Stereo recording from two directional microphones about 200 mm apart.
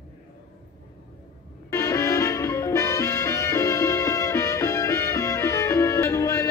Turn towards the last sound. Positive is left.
turn(degrees=15)  # may be behind; listen again after turning